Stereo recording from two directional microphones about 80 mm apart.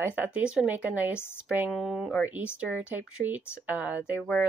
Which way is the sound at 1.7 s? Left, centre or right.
Centre.